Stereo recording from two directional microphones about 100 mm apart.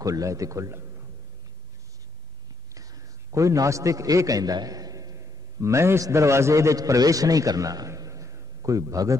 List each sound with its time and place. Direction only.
0.0 s a man's voice: 35° right (ahead or behind)
2.7 s a man's voice: 35° right (ahead or behind)